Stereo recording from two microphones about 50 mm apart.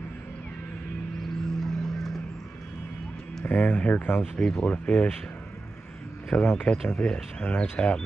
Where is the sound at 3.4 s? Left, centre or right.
Left.